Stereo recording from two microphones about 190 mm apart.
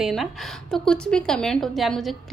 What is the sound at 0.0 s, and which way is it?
A woman's voice, centre (ahead or behind).